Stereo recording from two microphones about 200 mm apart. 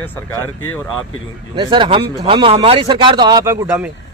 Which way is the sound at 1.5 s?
25° right (ahead or behind).